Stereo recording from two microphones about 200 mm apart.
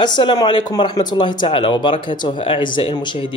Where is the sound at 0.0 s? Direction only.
25° left (ahead or behind).